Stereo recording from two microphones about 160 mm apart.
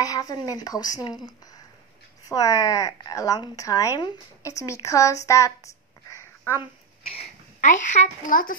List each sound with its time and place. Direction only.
0.0 s a woman's voice: 20° left (ahead or behind)
2.2 s a woman's voice: 20° left (ahead or behind)
7.6 s a child's voice: 50° left (ahead or behind)